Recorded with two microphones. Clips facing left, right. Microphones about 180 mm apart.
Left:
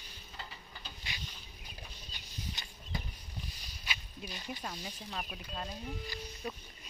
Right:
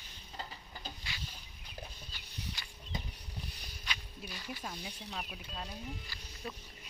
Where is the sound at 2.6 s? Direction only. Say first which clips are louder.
Left 1 dB; 20° left (ahead or behind).